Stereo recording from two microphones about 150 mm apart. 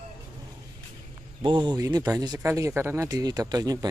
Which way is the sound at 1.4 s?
30° right (ahead or behind).